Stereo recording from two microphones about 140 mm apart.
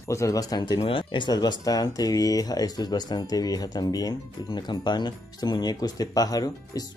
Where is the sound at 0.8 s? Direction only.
40° left (ahead or behind).